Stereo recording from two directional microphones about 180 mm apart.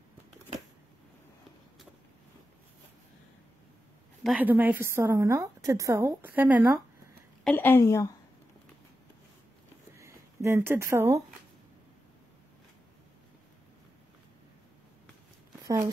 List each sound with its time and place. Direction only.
4.2 s a woman's voice: 5° right (ahead or behind)
7.4 s a woman's voice: 10° left (ahead or behind)
9.9 s speech: 15° right (ahead or behind)
15.6 s a sound: 25° right (ahead or behind)